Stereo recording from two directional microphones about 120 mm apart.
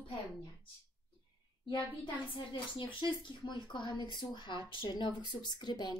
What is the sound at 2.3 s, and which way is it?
A woman's voice, 45° left (ahead or behind).